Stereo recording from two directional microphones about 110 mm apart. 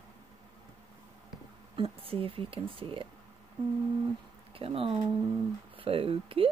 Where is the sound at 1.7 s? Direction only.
60° right (ahead or behind).